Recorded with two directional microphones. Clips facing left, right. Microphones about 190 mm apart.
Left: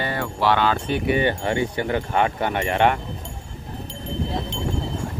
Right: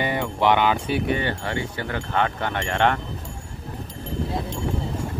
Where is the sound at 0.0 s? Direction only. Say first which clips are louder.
Right 1 dB; 15° right (ahead or behind).